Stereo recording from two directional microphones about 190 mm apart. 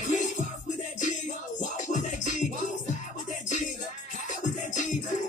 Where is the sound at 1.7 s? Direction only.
40° left (ahead or behind).